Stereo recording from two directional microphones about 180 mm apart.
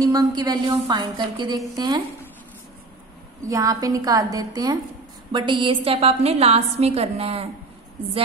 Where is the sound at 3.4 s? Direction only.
20° right (ahead or behind).